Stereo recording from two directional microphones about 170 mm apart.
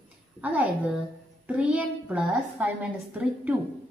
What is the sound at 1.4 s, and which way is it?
A child's voice, 5° right (ahead or behind).